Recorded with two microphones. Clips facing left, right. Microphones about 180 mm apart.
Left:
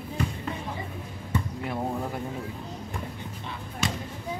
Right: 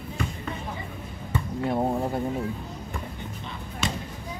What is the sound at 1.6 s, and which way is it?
Basketball bounce, 30° right (ahead or behind).